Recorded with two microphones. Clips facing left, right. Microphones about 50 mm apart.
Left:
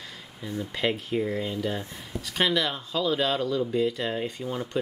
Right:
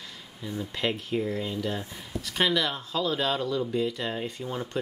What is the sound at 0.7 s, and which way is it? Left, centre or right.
Speech, centre.